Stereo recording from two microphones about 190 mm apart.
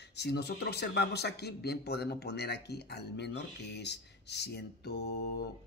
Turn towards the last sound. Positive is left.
turn(degrees=55)  # may be behind; listen again after turning